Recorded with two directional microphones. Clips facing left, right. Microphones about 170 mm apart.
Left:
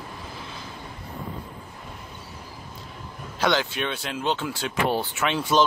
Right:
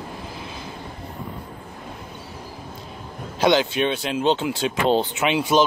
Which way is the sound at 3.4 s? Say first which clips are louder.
Right 6 dB; 20° right (ahead or behind).